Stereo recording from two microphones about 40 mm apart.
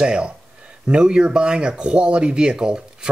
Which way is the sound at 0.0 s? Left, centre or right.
Right.